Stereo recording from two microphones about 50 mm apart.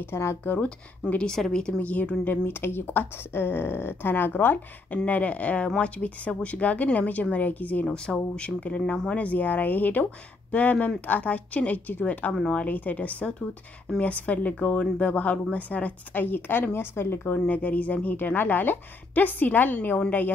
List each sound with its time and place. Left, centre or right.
0.1 s speech: left
0.5 s a woman's voice: left
1.3 s a woman's voice: centre
1.8 s a woman's voice: left
2.4 s speech: left
4.9 s a woman's voice: left
7.8 s a woman's voice: centre
9.1 s a woman's voice: left
17.5 s a woman's voice: left